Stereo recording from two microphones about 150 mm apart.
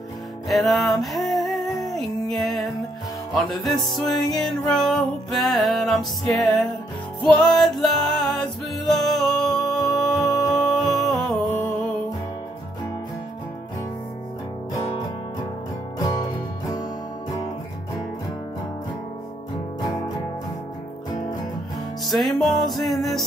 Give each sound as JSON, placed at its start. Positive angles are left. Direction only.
{"t": 0.5, "sound": "music", "side_deg": 0}
{"t": 16.0, "sound": "music", "side_deg": 25}
{"t": 22.0, "sound": "music", "side_deg": 0}